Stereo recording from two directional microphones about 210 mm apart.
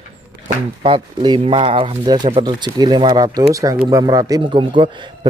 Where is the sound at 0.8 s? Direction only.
20° right (ahead or behind).